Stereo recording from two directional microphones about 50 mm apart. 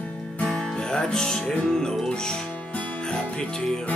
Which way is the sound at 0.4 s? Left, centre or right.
Left.